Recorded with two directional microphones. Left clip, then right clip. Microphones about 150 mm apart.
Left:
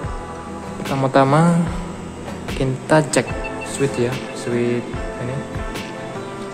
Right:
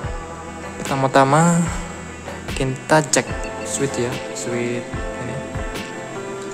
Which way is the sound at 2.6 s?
15° right (ahead or behind).